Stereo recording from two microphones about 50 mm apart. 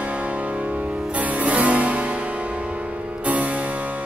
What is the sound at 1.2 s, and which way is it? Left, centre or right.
Music, right.